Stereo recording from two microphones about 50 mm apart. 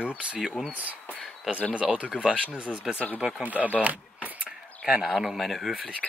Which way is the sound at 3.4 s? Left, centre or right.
Right.